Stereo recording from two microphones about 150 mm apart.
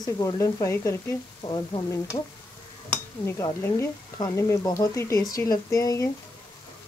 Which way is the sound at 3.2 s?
15° left (ahead or behind).